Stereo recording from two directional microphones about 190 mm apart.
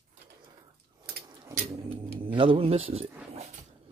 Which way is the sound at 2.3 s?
25° right (ahead or behind).